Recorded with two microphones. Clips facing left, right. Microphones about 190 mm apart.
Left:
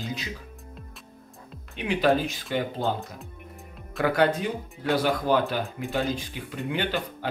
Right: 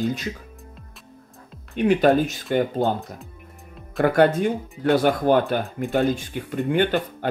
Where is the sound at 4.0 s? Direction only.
50° right (ahead or behind).